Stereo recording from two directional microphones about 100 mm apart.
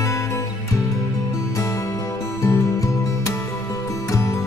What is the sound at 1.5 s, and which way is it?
Music, 30° left (ahead or behind).